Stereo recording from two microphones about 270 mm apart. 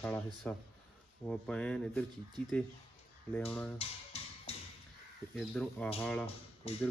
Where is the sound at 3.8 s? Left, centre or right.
Left.